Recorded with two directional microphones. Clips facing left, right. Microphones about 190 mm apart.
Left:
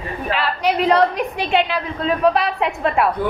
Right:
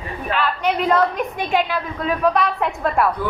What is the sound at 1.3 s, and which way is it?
Speech, 70° left (ahead or behind).